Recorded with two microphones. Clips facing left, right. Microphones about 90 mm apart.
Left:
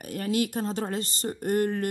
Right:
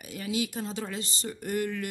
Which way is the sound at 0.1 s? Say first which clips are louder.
Left 4 dB; 55° left (ahead or behind).